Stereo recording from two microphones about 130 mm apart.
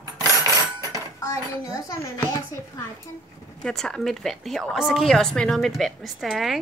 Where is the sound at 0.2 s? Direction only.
30° right (ahead or behind).